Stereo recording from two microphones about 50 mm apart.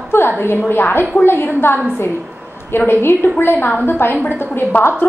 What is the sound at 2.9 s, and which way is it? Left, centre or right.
A woman's voice, left.